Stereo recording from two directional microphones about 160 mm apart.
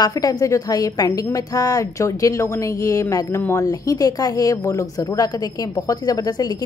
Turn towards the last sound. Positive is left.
turn(degrees=25)  # may be behind; listen again after turning